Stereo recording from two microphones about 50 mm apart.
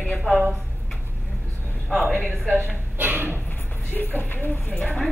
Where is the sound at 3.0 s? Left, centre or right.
Right.